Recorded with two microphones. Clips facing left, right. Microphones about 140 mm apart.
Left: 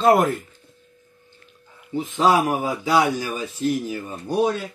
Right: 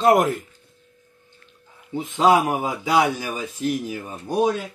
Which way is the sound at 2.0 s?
20° right (ahead or behind).